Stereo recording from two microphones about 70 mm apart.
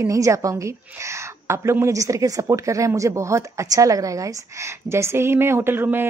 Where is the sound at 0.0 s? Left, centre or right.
Right.